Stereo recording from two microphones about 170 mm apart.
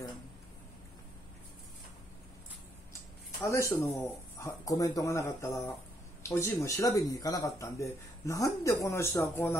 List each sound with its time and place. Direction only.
3.3 s speech: 15° left (ahead or behind)